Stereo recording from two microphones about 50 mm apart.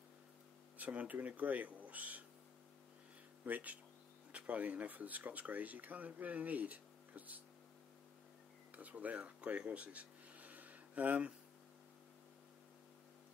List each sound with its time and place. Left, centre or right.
0.7 s speech: right
3.4 s speech: right
8.7 s speech: right